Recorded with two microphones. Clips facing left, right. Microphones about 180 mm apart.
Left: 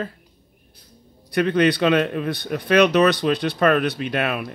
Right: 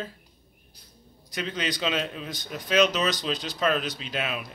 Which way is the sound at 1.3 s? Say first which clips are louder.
Left 13 dB; 60° left (ahead or behind).